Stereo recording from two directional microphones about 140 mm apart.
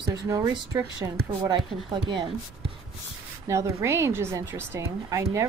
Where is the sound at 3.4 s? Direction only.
20° right (ahead or behind).